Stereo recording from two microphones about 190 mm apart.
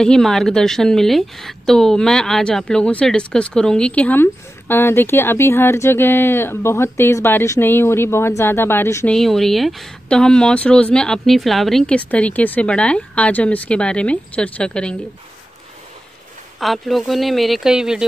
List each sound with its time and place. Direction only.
0.0 s a woman's voice: 5° left (ahead or behind)
9.1 s speech: centre (ahead or behind)
16.5 s speech: centre (ahead or behind)